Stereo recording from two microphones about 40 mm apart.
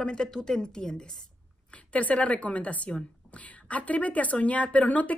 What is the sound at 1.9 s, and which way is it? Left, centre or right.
A woman's voice, left.